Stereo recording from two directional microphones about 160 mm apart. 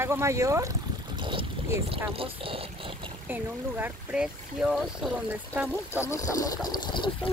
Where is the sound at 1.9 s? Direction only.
35° right (ahead or behind).